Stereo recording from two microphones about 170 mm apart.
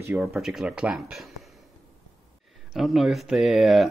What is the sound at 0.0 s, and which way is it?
Speech, 5° right (ahead or behind).